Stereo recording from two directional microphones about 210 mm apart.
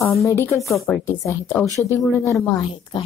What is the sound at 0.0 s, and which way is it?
A woman's voice, 15° left (ahead or behind).